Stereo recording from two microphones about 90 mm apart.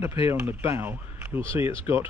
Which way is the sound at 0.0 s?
30° right (ahead or behind).